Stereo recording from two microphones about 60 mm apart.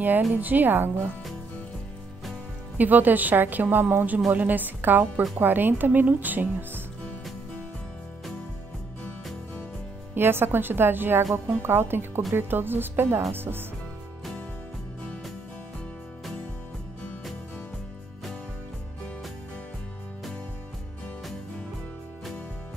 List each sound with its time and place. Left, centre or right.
0.3 s speech: right
2.8 s a woman's voice: right
10.1 s speech: right